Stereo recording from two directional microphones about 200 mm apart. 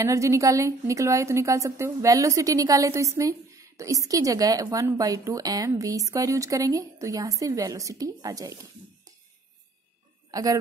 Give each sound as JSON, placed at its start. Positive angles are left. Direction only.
{"t": 0.0, "sound": "a woman's voice", "side_deg": -15}
{"t": 10.3, "sound": "a woman's voice", "side_deg": -15}